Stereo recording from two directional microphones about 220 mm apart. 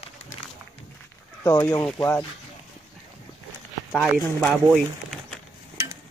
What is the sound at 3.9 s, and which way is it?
Speech, centre (ahead or behind).